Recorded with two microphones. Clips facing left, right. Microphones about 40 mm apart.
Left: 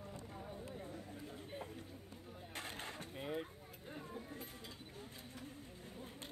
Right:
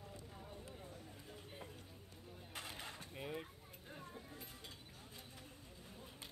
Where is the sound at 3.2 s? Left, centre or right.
Centre.